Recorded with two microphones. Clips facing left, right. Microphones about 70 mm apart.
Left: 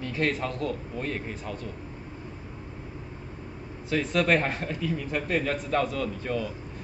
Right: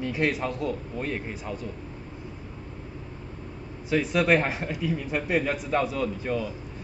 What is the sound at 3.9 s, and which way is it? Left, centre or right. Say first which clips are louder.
A man's voice: right 2 dB; centre.